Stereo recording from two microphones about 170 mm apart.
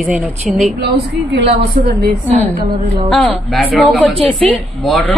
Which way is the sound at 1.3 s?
90° right.